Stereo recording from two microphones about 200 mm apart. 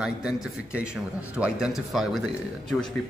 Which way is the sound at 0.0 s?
5° right (ahead or behind).